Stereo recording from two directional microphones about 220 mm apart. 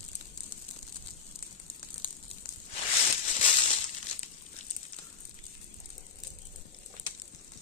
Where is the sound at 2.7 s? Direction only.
30° left (ahead or behind).